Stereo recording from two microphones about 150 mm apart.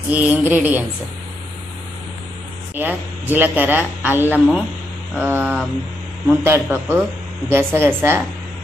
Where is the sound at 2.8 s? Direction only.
10° right (ahead or behind).